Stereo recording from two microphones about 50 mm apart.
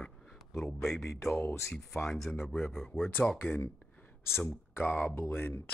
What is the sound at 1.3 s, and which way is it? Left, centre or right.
Speech, left.